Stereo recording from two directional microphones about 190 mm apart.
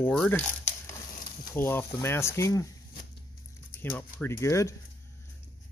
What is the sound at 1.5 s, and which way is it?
Speech, 10° left (ahead or behind).